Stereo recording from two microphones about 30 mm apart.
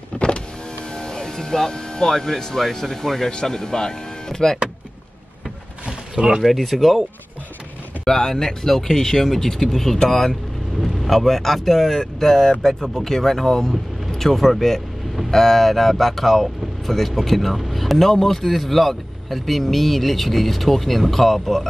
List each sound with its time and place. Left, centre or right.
0.1 s power windows: left
0.9 s music: left
2.6 s speech: centre
6.1 s speech: right
6.4 s speech: centre
8.0 s speech: left; by 21.6 s centre